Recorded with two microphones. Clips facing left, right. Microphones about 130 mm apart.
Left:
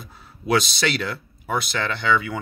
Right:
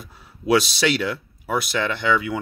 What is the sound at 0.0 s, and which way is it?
Speech, 10° right (ahead or behind).